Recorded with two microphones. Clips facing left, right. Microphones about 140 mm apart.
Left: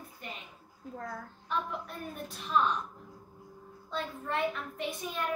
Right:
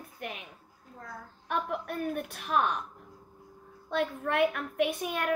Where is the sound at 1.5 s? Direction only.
65° right (ahead or behind).